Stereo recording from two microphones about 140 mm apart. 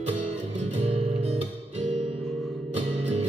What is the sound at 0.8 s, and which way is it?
Music, 50° right (ahead or behind).